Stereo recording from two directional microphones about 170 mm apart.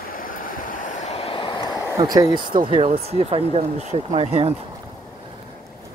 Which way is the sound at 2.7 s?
35° right (ahead or behind).